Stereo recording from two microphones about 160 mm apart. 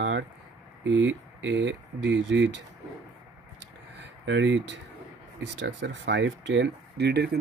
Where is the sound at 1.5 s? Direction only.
90° right.